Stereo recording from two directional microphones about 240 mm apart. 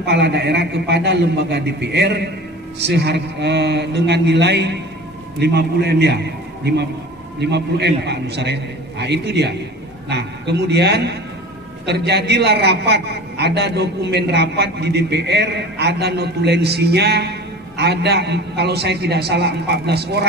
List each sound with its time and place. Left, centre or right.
0.0 s a man's voice: right